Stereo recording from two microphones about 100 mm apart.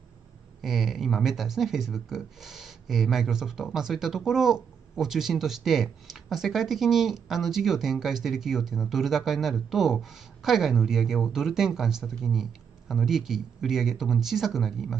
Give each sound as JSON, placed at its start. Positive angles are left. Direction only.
{"t": 0.6, "sound": "speech", "side_deg": 0}